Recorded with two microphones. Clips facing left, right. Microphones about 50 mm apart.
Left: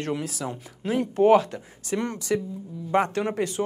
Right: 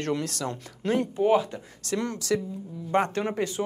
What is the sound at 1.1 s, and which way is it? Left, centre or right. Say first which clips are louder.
Speech: left 7 dB; left.